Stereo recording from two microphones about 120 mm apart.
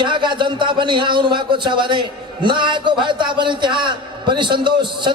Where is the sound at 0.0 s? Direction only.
40° right (ahead or behind).